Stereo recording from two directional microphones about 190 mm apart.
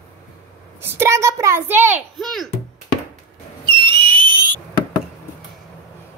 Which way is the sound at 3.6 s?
25° right (ahead or behind).